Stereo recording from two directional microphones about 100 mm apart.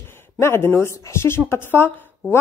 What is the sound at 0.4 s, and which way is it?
A woman's voice, 25° left (ahead or behind).